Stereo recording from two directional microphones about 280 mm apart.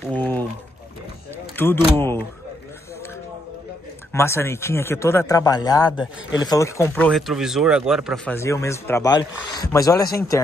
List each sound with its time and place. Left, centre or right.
0.0 s a sound: centre
1.6 s a man's voice: centre
4.1 s a man's voice: centre
8.4 s a man's voice: centre